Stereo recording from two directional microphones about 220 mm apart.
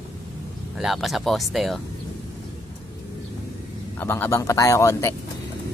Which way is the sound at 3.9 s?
10° left (ahead or behind).